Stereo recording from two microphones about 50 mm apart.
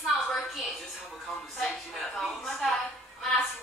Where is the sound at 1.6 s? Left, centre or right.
Centre.